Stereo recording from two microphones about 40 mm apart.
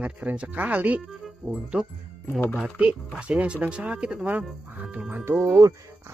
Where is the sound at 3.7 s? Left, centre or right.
Right.